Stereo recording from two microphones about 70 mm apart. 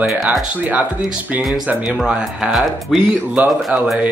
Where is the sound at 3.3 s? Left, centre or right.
Centre.